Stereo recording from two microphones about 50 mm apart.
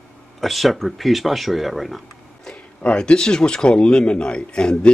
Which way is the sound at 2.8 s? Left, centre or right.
Left.